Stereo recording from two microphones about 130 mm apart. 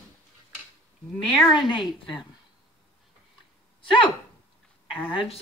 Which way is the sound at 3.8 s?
40° left (ahead or behind).